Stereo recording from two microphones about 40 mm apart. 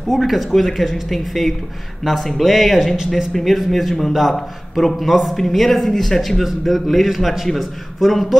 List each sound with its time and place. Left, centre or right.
0.1 s a man's voice: centre